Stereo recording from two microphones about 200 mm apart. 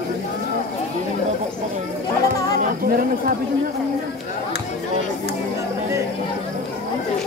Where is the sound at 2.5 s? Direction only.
45° right (ahead or behind).